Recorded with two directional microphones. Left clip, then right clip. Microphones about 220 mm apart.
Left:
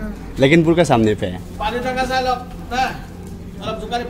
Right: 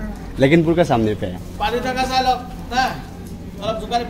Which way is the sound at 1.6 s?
45° right (ahead or behind).